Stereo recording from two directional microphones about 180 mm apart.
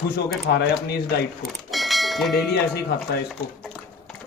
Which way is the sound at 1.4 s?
Centre (ahead or behind).